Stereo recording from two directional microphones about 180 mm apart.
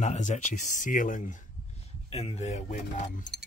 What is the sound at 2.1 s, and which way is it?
Speech, 35° left (ahead or behind).